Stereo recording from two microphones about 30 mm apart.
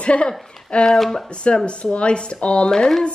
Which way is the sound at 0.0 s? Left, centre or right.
Left.